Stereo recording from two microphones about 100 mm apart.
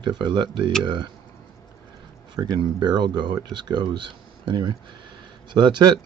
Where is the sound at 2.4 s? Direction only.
45° right (ahead or behind).